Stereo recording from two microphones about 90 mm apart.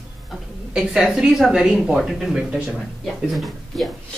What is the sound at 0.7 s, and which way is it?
A woman's voice, 5° right (ahead or behind).